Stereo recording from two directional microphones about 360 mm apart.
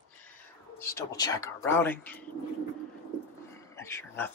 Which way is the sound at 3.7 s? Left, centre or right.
Centre.